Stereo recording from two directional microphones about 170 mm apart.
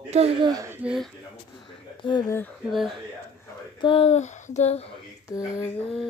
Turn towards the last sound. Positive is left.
turn(degrees=15)  # may be behind; listen again after turning